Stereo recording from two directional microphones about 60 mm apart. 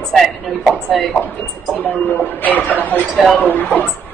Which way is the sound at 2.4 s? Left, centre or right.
Left.